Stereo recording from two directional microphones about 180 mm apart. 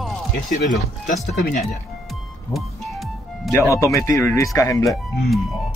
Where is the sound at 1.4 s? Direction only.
55° left (ahead or behind).